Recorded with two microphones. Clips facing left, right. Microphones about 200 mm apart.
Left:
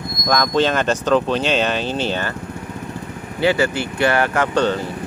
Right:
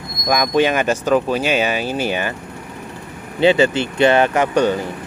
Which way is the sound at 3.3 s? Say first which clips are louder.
Right 4 dB; 20° right (ahead or behind).